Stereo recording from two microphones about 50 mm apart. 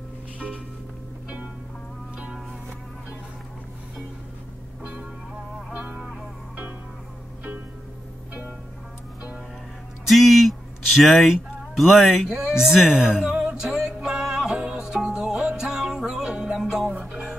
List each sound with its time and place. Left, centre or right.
5.7 s music: right
10.0 s a sound: centre
12.3 s speech: centre
13.7 s music: centre